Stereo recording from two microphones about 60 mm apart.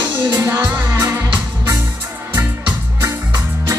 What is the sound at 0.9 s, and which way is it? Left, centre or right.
Music, right.